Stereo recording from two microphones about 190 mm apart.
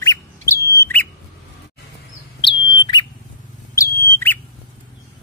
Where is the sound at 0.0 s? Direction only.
15° left (ahead or behind).